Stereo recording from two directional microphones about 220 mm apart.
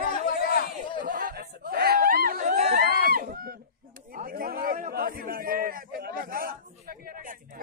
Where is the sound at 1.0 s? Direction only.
40° right (ahead or behind).